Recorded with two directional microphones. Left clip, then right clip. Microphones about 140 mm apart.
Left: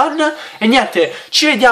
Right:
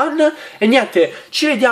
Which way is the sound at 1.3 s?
25° left (ahead or behind).